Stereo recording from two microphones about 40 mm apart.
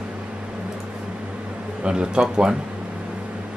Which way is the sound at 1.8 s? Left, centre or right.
Right.